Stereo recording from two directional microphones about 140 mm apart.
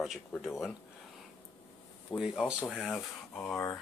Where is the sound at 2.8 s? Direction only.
5° left (ahead or behind).